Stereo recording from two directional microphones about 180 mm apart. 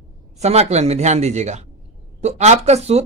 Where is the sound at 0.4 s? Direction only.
35° right (ahead or behind).